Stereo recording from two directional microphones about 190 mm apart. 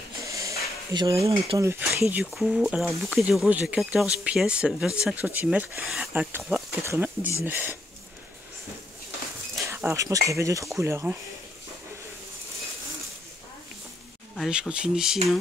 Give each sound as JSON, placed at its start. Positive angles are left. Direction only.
{"t": 0.2, "sound": "a sound", "side_deg": -15}
{"t": 1.5, "sound": "speech", "side_deg": -20}
{"t": 9.7, "sound": "speech", "side_deg": -15}
{"t": 14.3, "sound": "speech", "side_deg": 0}